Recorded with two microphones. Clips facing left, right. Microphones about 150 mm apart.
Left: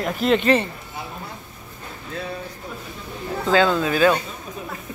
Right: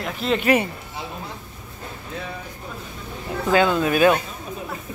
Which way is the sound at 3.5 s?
15° right (ahead or behind).